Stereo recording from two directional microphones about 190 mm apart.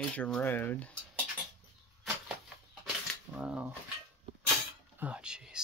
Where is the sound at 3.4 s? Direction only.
5° right (ahead or behind).